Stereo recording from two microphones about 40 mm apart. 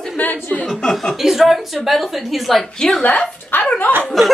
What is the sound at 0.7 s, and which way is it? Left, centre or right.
Speech, centre.